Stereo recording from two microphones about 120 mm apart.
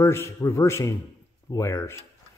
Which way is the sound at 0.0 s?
25° left (ahead or behind).